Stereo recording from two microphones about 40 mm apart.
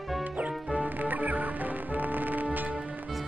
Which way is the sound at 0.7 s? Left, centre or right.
Right.